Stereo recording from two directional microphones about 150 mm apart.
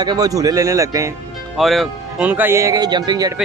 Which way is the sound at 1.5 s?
Centre (ahead or behind).